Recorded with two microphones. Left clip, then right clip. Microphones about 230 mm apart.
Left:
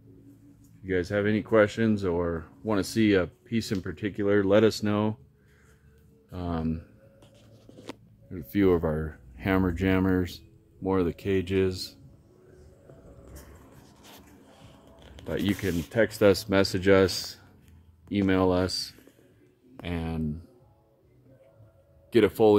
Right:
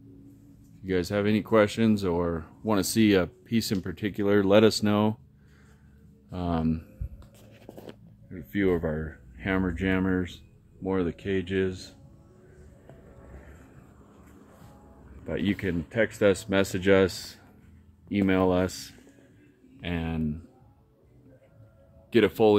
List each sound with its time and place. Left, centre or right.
0.8 s speech: centre
6.3 s speech: centre
8.3 s speech: left
15.2 s speech: centre
15.9 s speech: centre
22.1 s speech: centre